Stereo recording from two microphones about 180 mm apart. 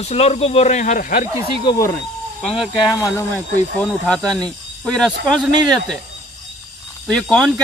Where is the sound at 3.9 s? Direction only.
5° left (ahead or behind).